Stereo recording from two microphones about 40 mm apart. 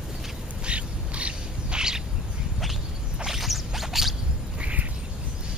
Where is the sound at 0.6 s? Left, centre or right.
Right.